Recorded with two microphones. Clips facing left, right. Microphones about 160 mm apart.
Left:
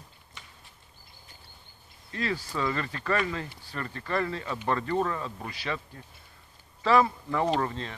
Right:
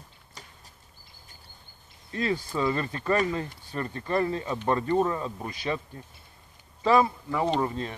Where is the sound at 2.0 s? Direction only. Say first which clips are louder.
Right 3 dB; 25° right (ahead or behind).